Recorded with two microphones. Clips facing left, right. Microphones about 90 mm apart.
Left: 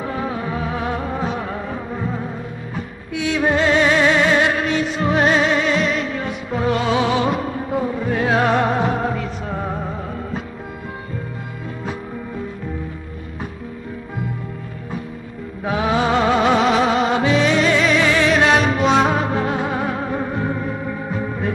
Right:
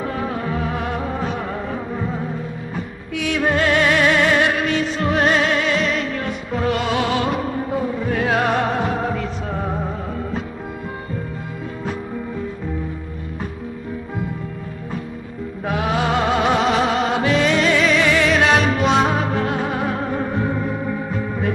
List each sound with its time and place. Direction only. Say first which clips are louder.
0.0 s music: even; 5° left (ahead or behind)
3.3 s music: left 1 dB; 15° left (ahead or behind)
7.2 s music: even; centre (ahead or behind)
15.6 s music: left 2 dB; 10° left (ahead or behind)
18.0 s music: even; 15° left (ahead or behind)
18.3 s music: left 1 dB; centre (ahead or behind)